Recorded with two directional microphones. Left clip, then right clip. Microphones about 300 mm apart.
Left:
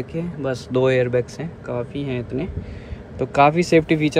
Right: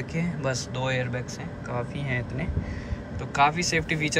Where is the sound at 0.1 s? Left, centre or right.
Centre.